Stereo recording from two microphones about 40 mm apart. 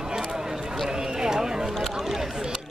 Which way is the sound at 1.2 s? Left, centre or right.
Centre.